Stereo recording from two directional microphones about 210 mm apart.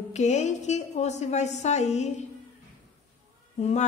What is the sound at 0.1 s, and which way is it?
A woman's voice, 35° left (ahead or behind).